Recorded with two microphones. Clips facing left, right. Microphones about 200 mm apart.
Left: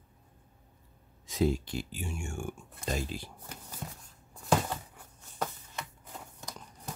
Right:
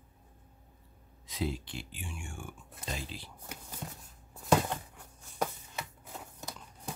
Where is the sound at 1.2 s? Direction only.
45° left (ahead or behind).